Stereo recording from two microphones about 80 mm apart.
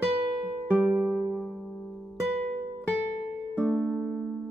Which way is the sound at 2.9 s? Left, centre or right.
Left.